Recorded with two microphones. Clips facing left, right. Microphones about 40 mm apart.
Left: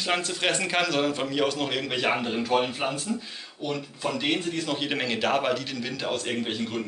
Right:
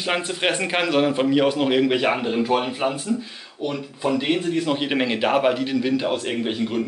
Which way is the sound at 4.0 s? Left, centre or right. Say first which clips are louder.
Right 6 dB; centre.